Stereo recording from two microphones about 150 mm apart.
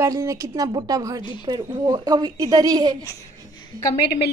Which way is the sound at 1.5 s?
25° right (ahead or behind).